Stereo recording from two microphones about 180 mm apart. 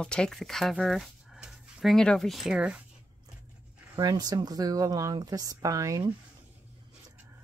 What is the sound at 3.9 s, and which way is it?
Speech, 20° right (ahead or behind).